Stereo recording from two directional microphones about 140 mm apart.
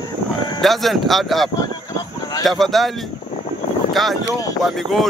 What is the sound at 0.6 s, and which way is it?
Speech, centre (ahead or behind).